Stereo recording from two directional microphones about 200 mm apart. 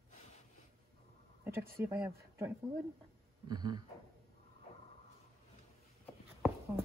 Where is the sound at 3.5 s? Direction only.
20° right (ahead or behind).